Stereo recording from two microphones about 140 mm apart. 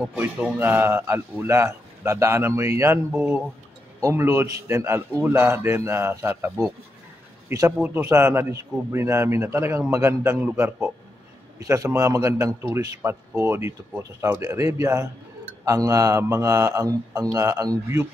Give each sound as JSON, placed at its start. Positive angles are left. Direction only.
{"t": 0.6, "sound": "a man's voice", "side_deg": -15}
{"t": 3.1, "sound": "a man's voice", "side_deg": -10}